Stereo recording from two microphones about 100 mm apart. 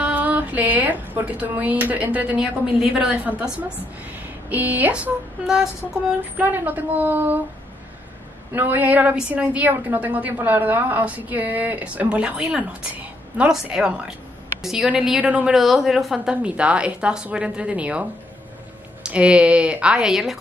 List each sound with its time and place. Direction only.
0.0 s speech: 15° right (ahead or behind)
6.5 s speech: 20° right (ahead or behind)
8.5 s a woman's voice: 15° right (ahead or behind)
19.0 s speech: 10° right (ahead or behind)